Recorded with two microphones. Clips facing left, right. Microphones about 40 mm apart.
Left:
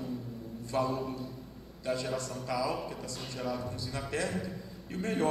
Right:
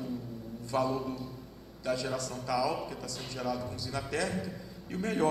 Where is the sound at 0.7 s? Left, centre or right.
Left.